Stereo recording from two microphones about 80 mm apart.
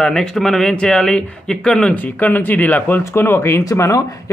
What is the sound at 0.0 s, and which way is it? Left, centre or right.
Speech, centre.